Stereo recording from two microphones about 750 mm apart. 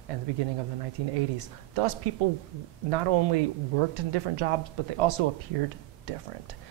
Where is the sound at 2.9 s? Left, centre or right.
Right.